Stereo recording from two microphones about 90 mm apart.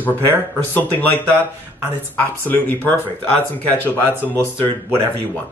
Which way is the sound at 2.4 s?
25° left (ahead or behind).